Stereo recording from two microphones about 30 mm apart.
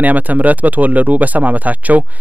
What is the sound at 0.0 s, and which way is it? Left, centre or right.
Speech, right.